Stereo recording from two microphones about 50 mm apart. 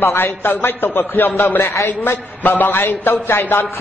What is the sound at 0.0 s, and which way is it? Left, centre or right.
Speech, left.